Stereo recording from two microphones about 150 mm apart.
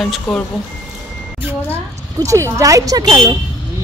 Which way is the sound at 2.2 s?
20° right (ahead or behind).